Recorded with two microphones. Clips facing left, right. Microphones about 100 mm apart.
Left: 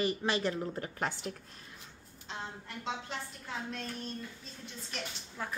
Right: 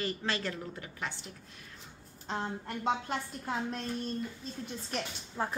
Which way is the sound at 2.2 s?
50° right (ahead or behind).